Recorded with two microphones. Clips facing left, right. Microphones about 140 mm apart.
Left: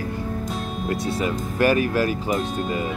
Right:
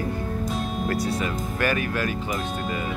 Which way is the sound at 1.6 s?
35° left (ahead or behind).